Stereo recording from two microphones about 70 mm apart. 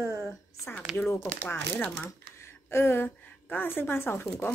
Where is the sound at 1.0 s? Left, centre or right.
Left.